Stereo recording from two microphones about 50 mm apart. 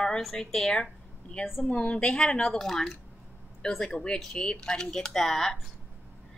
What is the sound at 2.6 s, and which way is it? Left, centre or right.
Speech, centre.